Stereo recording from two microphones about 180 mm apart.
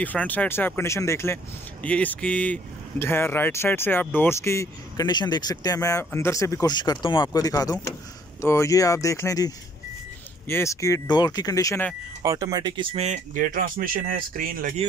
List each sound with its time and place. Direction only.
0.0 s speech: 10° left (ahead or behind)
12.2 s speech: 20° right (ahead or behind)
12.9 s speech: 40° right (ahead or behind)